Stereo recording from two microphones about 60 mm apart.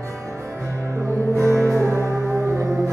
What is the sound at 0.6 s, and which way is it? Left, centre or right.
Music, right.